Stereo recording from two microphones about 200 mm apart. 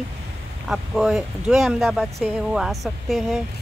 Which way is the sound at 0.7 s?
Centre (ahead or behind).